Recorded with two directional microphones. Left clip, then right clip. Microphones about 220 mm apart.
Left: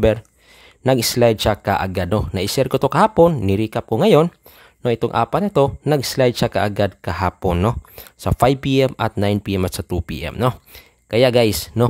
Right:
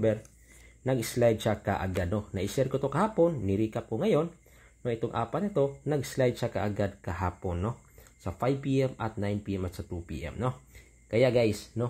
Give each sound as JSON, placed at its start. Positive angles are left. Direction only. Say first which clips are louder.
{"t": 0.8, "sound": "speech", "louder": "left 11 dB", "side_deg": 35}